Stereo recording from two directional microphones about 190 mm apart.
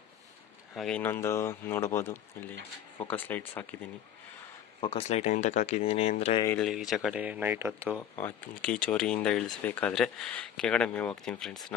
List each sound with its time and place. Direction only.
0.7 s speech: 5° left (ahead or behind)
4.7 s speech: 30° left (ahead or behind)
6.6 s speech: centre (ahead or behind)
7.9 s speech: 10° left (ahead or behind)